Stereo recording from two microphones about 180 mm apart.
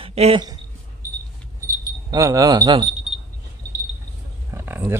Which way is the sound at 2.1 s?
20° right (ahead or behind).